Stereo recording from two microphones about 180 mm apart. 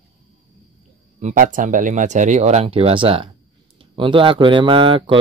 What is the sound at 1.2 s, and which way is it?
Speech, 45° right (ahead or behind).